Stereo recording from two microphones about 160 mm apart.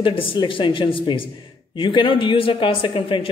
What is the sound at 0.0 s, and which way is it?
Speech, 35° left (ahead or behind).